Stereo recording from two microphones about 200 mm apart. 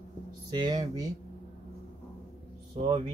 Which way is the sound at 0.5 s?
20° right (ahead or behind).